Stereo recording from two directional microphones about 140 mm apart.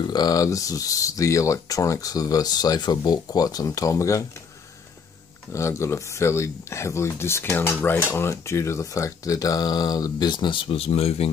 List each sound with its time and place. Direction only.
0.1 s speech: 25° left (ahead or behind)
5.5 s speech: 20° left (ahead or behind); by 11.2 s 45° left (ahead or behind)